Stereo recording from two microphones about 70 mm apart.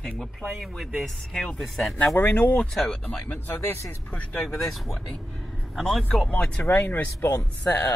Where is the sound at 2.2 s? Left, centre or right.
Left.